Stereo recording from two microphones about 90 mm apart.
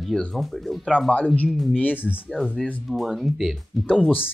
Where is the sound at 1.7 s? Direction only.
15° left (ahead or behind).